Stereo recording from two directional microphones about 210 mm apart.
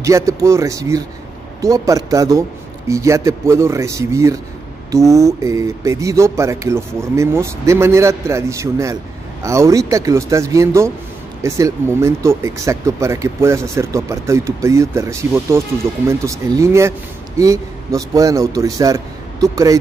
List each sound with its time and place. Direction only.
0.0 s speech: 15° right (ahead or behind)